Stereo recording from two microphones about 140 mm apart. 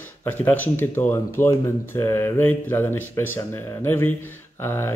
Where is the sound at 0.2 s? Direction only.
15° left (ahead or behind).